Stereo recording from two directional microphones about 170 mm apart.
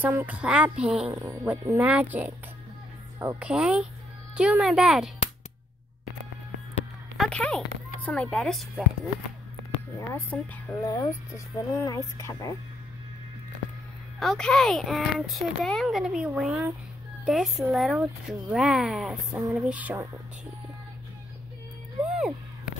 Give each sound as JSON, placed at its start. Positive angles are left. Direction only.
{"t": 0.0, "sound": "speech", "side_deg": -10}
{"t": 7.2, "sound": "speech", "side_deg": 5}
{"t": 9.9, "sound": "a woman's voice", "side_deg": 15}
{"t": 14.2, "sound": "speech", "side_deg": 5}